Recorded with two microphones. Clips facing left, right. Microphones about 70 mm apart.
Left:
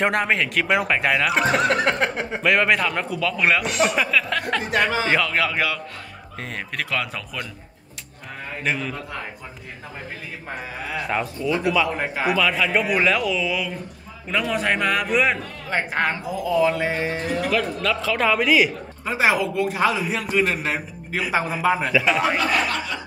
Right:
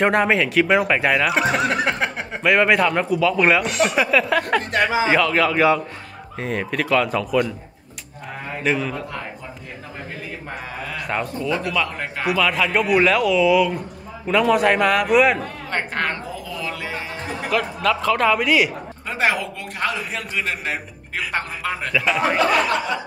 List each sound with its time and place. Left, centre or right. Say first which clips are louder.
0.0 s a man's voice: right 3 dB; centre
8.5 s a man's voice: right 4 dB; centre
10.5 s a man's voice: left 2 dB; centre
15.7 s a woman's voice: left 2 dB; centre
16.4 s a sound: left 12 dB; left
17.5 s a man's voice: right 5 dB; centre